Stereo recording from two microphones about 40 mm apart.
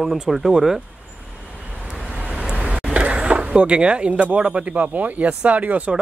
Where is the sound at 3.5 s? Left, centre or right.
Right.